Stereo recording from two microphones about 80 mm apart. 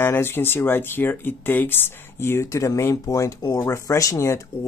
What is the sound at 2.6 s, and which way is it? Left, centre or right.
Speech, left.